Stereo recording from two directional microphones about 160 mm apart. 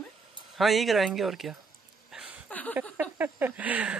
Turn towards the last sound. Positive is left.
turn(degrees=-10)  # may be behind; listen again after turning